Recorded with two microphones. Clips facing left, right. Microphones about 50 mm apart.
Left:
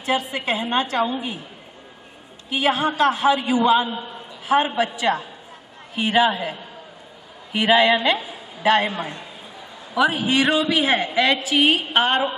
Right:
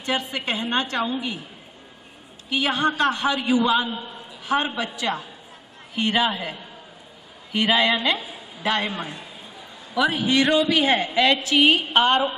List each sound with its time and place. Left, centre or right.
0.0 s a man's voice: centre
2.5 s a man's voice: centre
5.9 s a man's voice: centre
7.5 s a man's voice: centre